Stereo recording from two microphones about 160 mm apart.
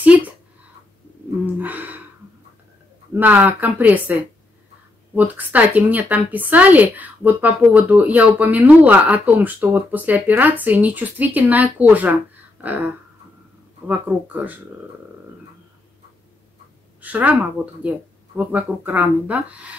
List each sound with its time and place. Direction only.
1.4 s gasp: 10° right (ahead or behind)
3.2 s a woman's voice: 10° right (ahead or behind)
17.0 s a woman's voice: 10° right (ahead or behind)